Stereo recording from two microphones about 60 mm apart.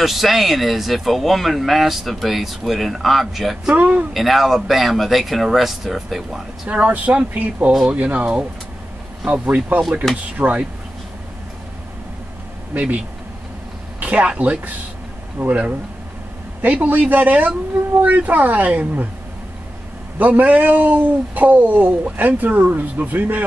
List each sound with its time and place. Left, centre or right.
0.0 s speech: centre
3.7 s speech: right
4.1 s speech: centre
6.7 s speech: right
12.7 s speech: right
20.2 s speech: right